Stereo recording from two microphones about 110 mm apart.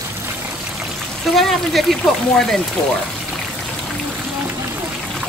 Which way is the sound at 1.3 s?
Centre (ahead or behind).